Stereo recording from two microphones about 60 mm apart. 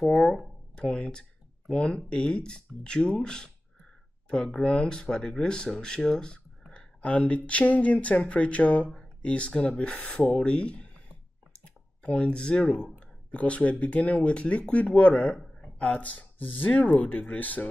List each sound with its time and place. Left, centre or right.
0.7 s speech: centre
11.5 s clicking: centre
13.0 s speech: left